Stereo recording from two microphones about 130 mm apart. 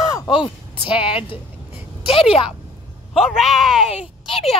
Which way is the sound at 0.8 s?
45° left (ahead or behind).